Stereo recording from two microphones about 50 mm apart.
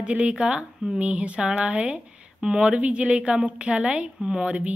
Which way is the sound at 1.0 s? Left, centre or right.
Right.